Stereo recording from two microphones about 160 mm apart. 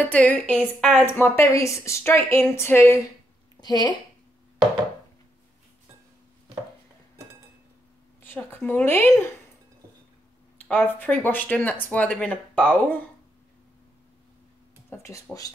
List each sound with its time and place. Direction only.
0.0 s a woman's voice: 10° left (ahead or behind); by 3.9 s 25° left (ahead or behind)
8.2 s a woman's voice: 10° left (ahead or behind)
10.7 s a woman's voice: 10° left (ahead or behind)
14.9 s speech: 15° left (ahead or behind)